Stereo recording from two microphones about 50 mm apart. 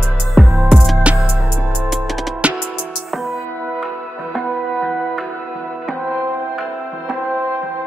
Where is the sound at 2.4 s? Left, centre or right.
Right.